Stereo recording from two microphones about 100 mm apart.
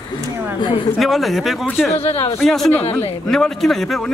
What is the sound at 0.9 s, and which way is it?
Speech, centre (ahead or behind).